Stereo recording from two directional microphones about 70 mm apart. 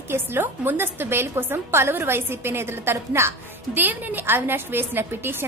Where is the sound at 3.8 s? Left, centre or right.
Right.